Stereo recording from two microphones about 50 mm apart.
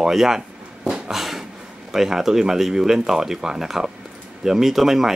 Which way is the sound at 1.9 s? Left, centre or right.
Centre.